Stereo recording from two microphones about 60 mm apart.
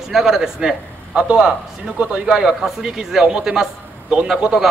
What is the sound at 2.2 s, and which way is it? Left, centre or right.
A man's voice, centre.